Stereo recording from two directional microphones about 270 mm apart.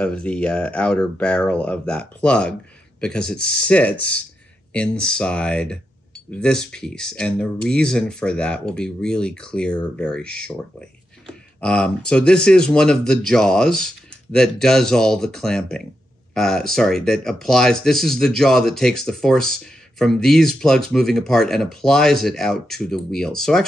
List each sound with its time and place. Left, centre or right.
0.0 s speech: centre
11.6 s speech: centre